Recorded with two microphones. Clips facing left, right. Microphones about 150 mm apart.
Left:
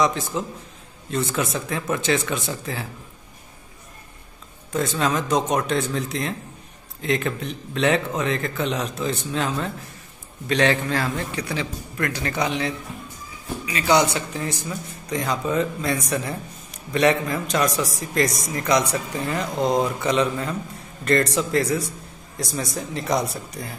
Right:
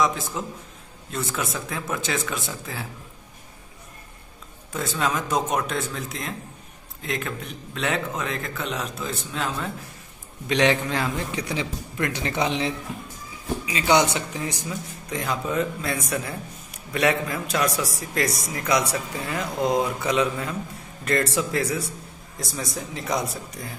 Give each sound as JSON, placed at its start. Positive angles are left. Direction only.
{"t": 0.0, "sound": "speech", "side_deg": 0}
{"t": 4.7, "sound": "speech", "side_deg": -5}
{"t": 10.5, "sound": "a man's voice", "side_deg": -15}